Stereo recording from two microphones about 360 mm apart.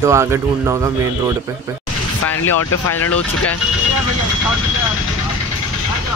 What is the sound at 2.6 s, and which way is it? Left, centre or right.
Speech, left.